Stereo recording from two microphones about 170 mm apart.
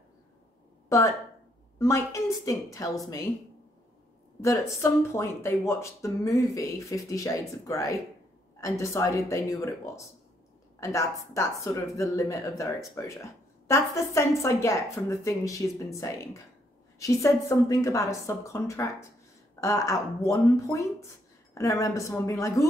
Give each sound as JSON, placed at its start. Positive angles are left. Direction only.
{"t": 0.8, "sound": "speech", "side_deg": 20}
{"t": 4.4, "sound": "speech", "side_deg": 20}